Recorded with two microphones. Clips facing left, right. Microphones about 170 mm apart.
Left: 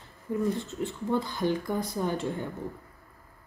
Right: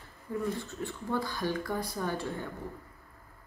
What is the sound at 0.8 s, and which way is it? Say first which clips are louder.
Speech: left 4 dB; 20° left (ahead or behind).